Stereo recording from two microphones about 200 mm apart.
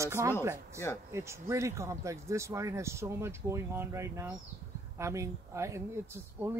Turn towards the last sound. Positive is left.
turn(degrees=-15)  # may be behind; listen again after turning